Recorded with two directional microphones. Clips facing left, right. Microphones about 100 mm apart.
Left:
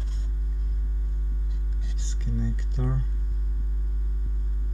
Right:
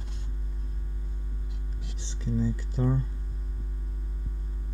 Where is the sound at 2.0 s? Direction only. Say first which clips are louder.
Right 4 dB; 35° right (ahead or behind).